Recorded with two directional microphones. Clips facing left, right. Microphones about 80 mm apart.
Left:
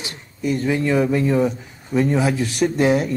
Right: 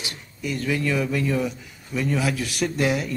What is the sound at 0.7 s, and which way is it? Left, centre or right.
Speech, left.